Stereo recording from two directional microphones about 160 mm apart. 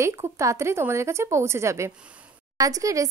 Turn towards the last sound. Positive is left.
turn(degrees=-20)  # may be behind; listen again after turning